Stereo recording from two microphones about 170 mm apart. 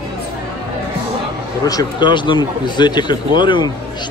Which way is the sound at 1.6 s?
20° left (ahead or behind).